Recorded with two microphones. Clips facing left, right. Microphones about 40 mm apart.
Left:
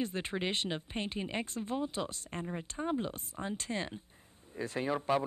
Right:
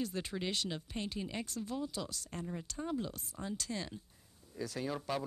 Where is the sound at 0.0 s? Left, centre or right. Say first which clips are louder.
Left 3 dB; left.